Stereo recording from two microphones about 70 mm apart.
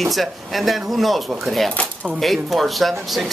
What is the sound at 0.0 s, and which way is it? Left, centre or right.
Speech, centre.